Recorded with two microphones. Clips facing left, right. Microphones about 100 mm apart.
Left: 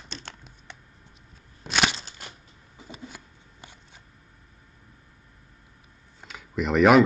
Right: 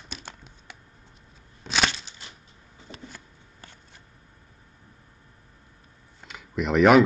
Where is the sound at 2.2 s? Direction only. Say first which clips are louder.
Left 3 dB; 55° left (ahead or behind).